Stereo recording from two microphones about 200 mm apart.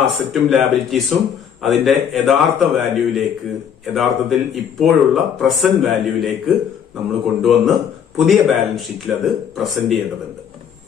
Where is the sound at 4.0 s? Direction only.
Centre (ahead or behind).